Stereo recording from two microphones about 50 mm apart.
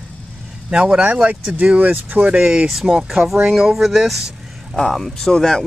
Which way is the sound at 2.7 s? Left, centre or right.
Centre.